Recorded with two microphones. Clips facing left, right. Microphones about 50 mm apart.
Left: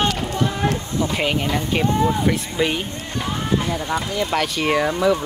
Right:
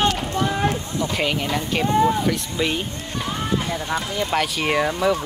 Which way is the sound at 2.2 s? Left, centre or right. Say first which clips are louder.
Left 2 dB; centre.